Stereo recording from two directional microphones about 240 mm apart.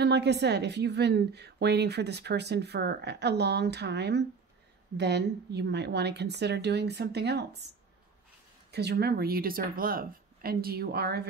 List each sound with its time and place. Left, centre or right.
0.0 s a woman's voice: right
8.7 s speech: right